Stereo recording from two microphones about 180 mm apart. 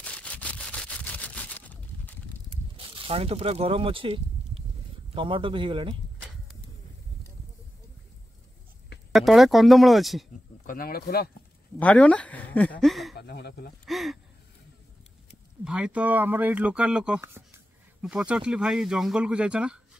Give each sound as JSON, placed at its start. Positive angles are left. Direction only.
{"t": 0.0, "sound": "a sound", "side_deg": 5}
{"t": 2.9, "sound": "speech", "side_deg": -30}
{"t": 9.1, "sound": "speech", "side_deg": 0}
{"t": 10.7, "sound": "speech", "side_deg": 55}
{"t": 11.8, "sound": "speech", "side_deg": 5}
{"t": 12.8, "sound": "a sound", "side_deg": 0}
{"t": 13.1, "sound": "speech", "side_deg": 70}
{"t": 13.8, "sound": "gasp", "side_deg": 0}
{"t": 15.6, "sound": "speech", "side_deg": -5}